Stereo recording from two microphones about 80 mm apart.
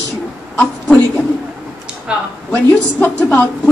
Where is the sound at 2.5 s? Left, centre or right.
Left.